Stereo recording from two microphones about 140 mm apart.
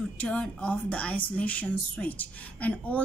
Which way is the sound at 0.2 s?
10° left (ahead or behind).